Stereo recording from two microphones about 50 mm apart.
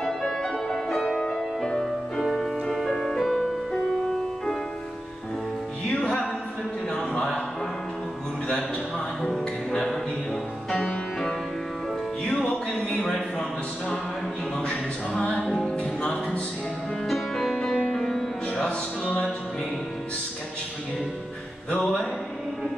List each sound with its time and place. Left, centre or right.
0.0 s music: centre
5.9 s music: left
7.2 s music: centre
9.4 s music: centre
12.4 s a sound: centre
15.8 s music: left
17.1 s music: centre
18.7 s music: centre
21.7 s music: centre